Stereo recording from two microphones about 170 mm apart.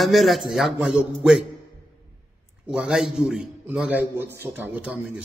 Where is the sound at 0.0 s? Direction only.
Centre (ahead or behind).